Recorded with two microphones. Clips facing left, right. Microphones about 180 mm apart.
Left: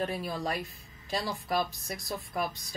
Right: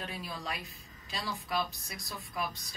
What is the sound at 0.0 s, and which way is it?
Speech, 50° left (ahead or behind).